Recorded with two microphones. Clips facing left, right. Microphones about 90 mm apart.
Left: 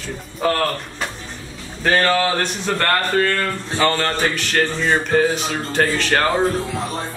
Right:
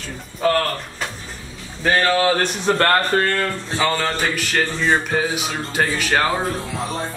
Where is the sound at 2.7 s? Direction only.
30° right (ahead or behind).